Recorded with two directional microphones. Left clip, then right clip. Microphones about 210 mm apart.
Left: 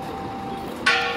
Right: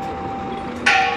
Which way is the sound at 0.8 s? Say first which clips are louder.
Right 5 dB; 45° right (ahead or behind).